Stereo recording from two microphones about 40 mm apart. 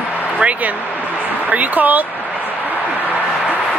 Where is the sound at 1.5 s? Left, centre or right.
Right.